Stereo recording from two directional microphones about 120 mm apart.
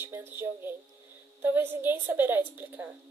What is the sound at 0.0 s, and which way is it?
A woman's voice, 20° right (ahead or behind).